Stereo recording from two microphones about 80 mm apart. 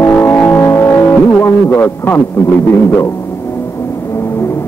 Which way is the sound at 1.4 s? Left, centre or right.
Left.